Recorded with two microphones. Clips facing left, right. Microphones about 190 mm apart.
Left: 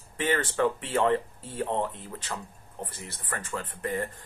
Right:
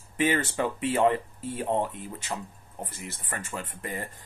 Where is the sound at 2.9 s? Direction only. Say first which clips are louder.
Even; 10° right (ahead or behind).